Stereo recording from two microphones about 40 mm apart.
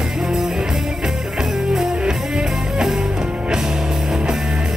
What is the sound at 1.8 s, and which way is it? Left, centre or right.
Music, centre.